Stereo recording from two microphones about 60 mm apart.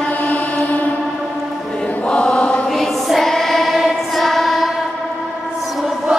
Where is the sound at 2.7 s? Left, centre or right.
Centre.